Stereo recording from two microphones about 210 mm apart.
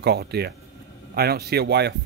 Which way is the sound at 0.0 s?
50° right (ahead or behind).